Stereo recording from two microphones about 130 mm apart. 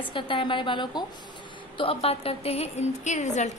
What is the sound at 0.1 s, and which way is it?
A woman's voice, 40° left (ahead or behind).